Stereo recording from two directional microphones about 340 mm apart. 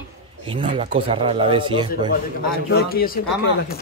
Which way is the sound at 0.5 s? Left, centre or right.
Centre.